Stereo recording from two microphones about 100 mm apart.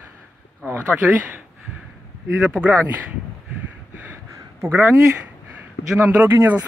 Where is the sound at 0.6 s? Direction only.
15° right (ahead or behind).